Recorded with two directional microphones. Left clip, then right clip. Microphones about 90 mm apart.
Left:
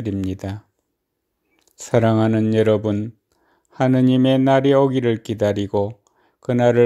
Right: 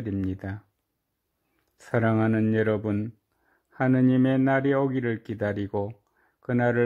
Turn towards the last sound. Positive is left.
turn(degrees=20)  # may be behind; listen again after turning